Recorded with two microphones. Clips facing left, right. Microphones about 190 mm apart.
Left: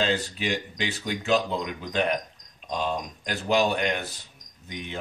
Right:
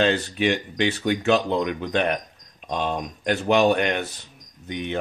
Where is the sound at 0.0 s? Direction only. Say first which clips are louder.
Right 6 dB; 65° right (ahead or behind).